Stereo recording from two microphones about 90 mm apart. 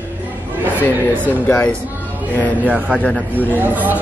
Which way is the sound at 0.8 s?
20° left (ahead or behind).